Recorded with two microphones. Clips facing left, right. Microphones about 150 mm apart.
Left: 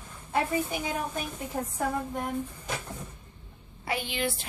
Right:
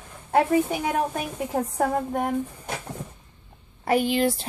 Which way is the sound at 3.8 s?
45° right (ahead or behind).